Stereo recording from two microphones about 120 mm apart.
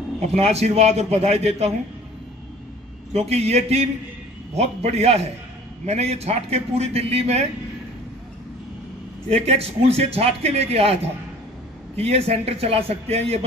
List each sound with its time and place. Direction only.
0.3 s a man's voice: 60° right (ahead or behind)
3.1 s a man's voice: 60° right (ahead or behind)
9.3 s a man's voice: 60° right (ahead or behind)
12.0 s a man's voice: 55° right (ahead or behind)